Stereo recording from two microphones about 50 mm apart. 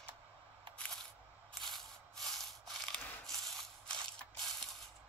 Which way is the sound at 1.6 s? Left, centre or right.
Centre.